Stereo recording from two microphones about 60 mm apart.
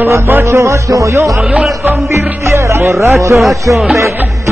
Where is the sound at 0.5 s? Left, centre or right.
Right.